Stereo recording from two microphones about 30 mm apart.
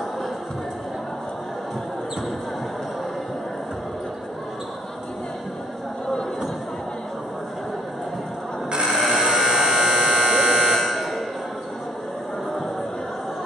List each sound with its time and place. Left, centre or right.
8.8 s a sound: centre
9.6 s electric shaver: centre
10.8 s buzzer: centre